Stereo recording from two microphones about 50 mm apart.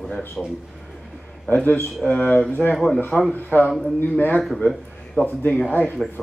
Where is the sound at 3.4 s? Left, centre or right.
Left.